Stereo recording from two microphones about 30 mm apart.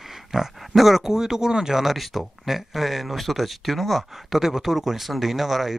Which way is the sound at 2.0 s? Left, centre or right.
Centre.